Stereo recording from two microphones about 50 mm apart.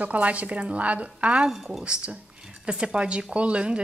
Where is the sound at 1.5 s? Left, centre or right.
Centre.